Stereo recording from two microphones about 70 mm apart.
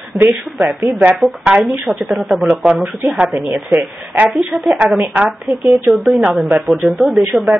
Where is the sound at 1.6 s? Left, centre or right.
Centre.